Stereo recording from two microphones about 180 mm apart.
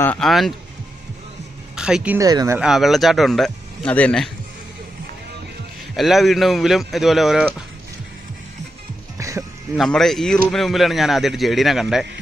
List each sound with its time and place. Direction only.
0.0 s speech: 5° left (ahead or behind)
1.8 s speech: 5° right (ahead or behind)
2.1 s speech: 20° right (ahead or behind)
2.6 s speech: centre (ahead or behind)
5.9 s speech: centre (ahead or behind)
9.2 s music: 15° right (ahead or behind)
9.9 s speech: centre (ahead or behind)